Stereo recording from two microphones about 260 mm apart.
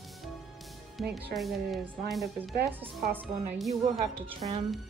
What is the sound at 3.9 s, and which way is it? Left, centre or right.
Speech, right.